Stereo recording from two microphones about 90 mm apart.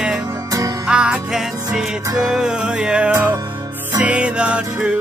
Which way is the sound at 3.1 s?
25° right (ahead or behind).